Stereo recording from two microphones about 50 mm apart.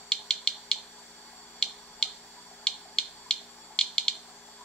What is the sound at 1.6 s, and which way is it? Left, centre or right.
Finger snapping, centre.